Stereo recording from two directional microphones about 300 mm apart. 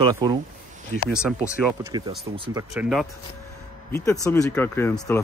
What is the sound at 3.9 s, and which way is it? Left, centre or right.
Speech, centre.